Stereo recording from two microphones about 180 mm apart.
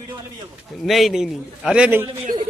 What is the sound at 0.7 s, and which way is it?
A man's voice, centre (ahead or behind).